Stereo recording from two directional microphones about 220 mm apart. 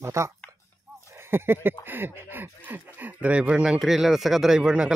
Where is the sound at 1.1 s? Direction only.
10° right (ahead or behind).